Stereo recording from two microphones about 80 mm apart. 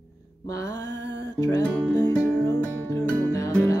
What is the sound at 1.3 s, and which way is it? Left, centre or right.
Music, left.